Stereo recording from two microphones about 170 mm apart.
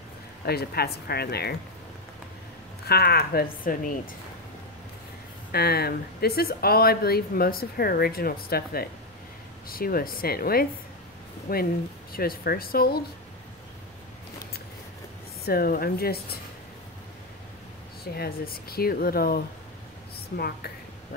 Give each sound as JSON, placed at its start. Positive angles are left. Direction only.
{"t": 0.5, "sound": "speech", "side_deg": 70}
{"t": 2.9, "sound": "speech", "side_deg": 65}
{"t": 5.5, "sound": "speech", "side_deg": 65}
{"t": 15.4, "sound": "speech", "side_deg": 60}
{"t": 18.0, "sound": "speech", "side_deg": 65}